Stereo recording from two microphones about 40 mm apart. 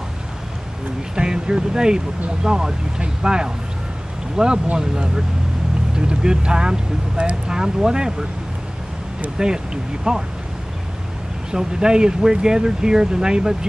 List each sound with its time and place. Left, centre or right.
1.1 s speech: centre
9.4 s speech: centre
11.5 s speech: centre